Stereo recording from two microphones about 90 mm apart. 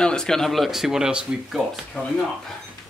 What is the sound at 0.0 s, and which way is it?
Speech, 10° left (ahead or behind).